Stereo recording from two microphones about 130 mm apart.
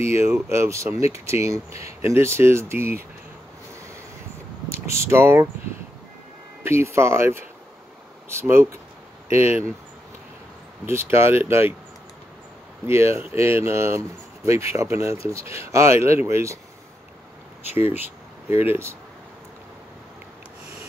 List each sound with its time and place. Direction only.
0.0 s speech: 20° right (ahead or behind)
4.6 s speech: 20° right (ahead or behind)
6.6 s speech: 20° right (ahead or behind)
10.9 s speech: 20° right (ahead or behind)
12.8 s speech: 20° right (ahead or behind)
17.7 s speech: 15° right (ahead or behind)